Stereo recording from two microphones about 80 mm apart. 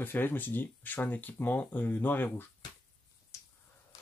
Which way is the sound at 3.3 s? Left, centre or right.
Left.